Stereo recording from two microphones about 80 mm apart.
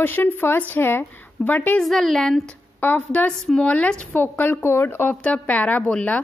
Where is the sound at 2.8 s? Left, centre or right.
Centre.